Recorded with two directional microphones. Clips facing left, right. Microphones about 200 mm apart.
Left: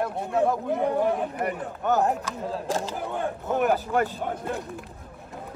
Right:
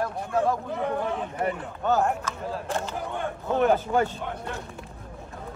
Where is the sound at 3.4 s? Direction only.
5° left (ahead or behind).